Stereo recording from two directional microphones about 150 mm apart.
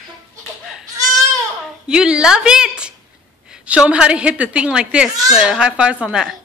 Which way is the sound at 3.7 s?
5° right (ahead or behind).